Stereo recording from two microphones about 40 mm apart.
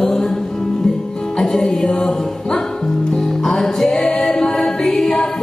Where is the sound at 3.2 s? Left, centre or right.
Centre.